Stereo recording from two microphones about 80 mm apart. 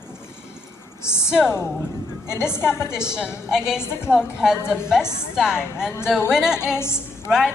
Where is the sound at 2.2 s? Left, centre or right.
Left.